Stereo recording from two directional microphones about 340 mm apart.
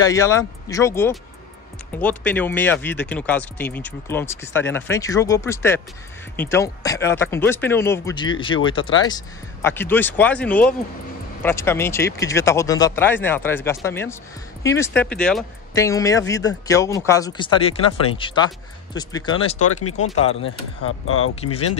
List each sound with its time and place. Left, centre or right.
0.0 s speech: centre
19.6 s speech: left
21.4 s speech: centre